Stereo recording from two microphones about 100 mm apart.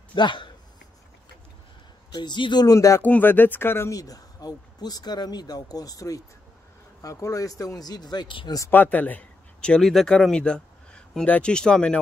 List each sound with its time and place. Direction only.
0.1 s speech: 50° left (ahead or behind)
2.1 s speech: 50° left (ahead or behind)
3.0 s speech: 20° left (ahead or behind); by 8.5 s 50° left (ahead or behind)
8.6 s speech: 20° left (ahead or behind)